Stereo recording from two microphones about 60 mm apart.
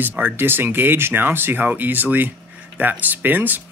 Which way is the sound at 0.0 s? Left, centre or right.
Right.